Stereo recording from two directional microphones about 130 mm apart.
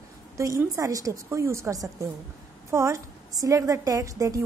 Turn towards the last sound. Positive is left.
turn(degrees=-25)  # may be behind; listen again after turning